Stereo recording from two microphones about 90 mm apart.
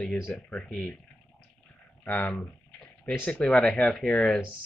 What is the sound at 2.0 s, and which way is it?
Speech, 20° left (ahead or behind).